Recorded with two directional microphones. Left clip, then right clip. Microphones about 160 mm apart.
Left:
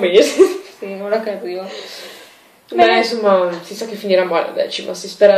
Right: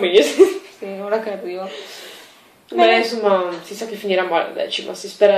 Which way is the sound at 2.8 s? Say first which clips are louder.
Left 1 dB; 15° left (ahead or behind).